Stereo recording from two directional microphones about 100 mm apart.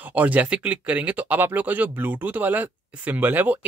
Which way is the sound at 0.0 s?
15° right (ahead or behind).